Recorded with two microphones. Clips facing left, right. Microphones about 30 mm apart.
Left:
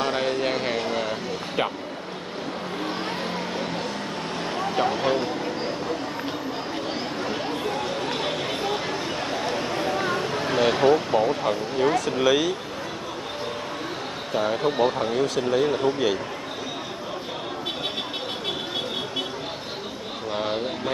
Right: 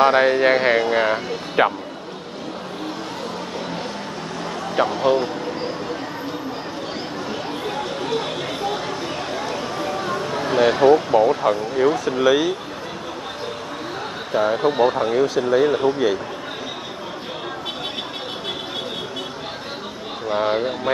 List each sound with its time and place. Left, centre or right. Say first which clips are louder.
0.0 s speech: right 9 dB; right
4.8 s speech: right 6 dB; centre
8.3 s chatter: right 1 dB; centre
9.8 s a sound: right 1 dB; centre
10.2 s speech: right 7 dB; centre
14.3 s speech: right 5 dB; centre
20.2 s speech: right 7 dB; centre